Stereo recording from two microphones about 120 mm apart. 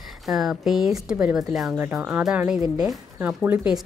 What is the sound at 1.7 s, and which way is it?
Speech, 15° right (ahead or behind).